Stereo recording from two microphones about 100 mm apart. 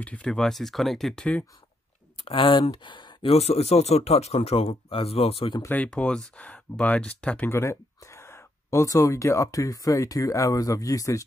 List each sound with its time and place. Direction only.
0.0 s speech: 10° left (ahead or behind)
2.2 s speech: 55° left (ahead or behind)
3.3 s speech: 90° left
5.9 s speech: 10° left (ahead or behind)
7.4 s speech: 25° left (ahead or behind)